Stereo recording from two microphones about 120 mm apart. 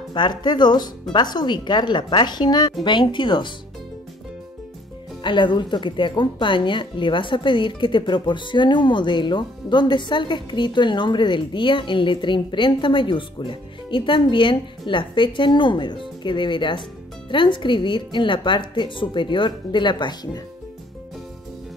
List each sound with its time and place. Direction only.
0.1 s speech: 40° left (ahead or behind)
5.2 s speech: 40° left (ahead or behind)